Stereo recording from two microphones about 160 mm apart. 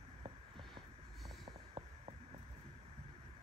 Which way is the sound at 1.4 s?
30° right (ahead or behind).